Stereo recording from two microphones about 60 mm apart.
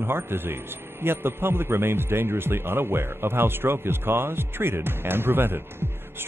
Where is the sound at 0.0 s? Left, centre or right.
Right.